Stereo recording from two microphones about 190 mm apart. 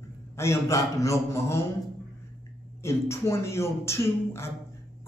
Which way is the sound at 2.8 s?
15° left (ahead or behind).